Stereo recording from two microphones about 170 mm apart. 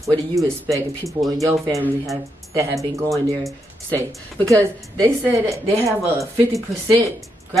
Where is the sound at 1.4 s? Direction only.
15° right (ahead or behind).